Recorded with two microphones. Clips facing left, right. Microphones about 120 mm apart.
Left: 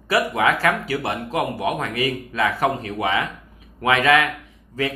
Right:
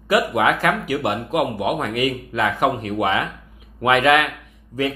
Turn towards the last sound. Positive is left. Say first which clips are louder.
# right 2 dB
turn(degrees=-15)  # may be behind; listen again after turning